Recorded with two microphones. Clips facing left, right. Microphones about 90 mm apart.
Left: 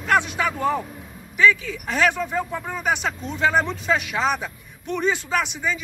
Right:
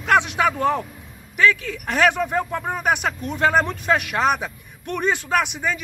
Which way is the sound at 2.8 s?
60° right (ahead or behind).